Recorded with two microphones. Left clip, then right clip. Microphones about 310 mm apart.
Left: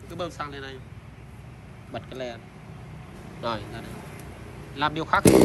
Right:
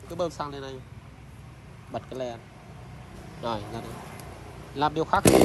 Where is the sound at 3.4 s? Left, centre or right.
Centre.